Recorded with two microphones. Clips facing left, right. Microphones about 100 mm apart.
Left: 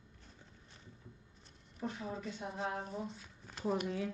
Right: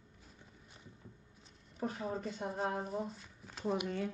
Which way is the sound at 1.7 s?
45° right (ahead or behind).